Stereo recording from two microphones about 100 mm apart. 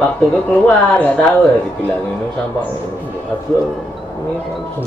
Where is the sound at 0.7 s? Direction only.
15° left (ahead or behind).